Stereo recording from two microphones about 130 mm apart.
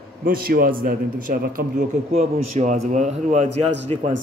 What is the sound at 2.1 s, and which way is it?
A man's voice, 60° right (ahead or behind).